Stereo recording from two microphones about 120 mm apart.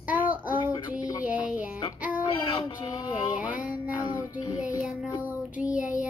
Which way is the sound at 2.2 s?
45° left (ahead or behind).